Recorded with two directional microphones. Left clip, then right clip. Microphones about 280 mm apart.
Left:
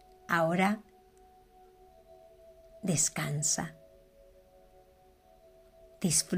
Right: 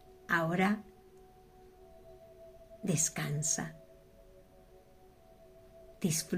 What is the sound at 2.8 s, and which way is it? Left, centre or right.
Speech, left.